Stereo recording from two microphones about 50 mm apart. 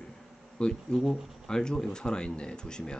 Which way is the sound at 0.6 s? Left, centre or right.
Centre.